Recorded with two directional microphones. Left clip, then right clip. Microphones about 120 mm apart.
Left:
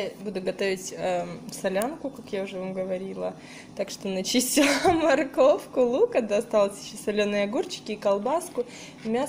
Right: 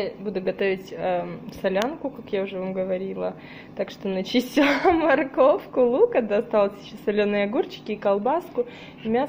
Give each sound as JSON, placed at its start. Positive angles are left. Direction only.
{"t": 0.0, "sound": "speech", "side_deg": 20}